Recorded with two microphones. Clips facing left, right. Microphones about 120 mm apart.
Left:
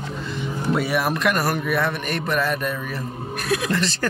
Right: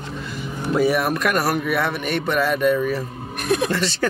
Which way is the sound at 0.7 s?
Centre (ahead or behind).